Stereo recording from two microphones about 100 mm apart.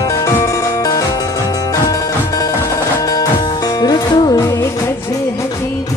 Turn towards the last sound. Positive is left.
turn(degrees=35)  # may be behind; listen again after turning